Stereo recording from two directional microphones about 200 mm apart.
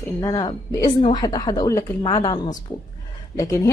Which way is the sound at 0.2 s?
20° left (ahead or behind).